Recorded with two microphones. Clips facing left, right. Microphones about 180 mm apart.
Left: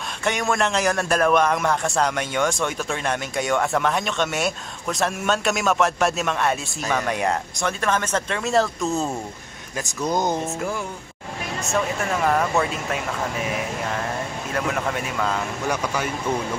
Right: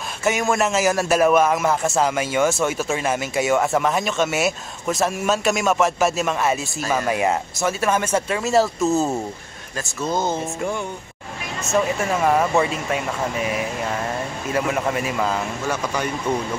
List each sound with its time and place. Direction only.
0.2 s a man's voice: 5° right (ahead or behind)
9.8 s speech: 15° left (ahead or behind)
11.6 s a man's voice: centre (ahead or behind)
15.7 s speech: 10° left (ahead or behind)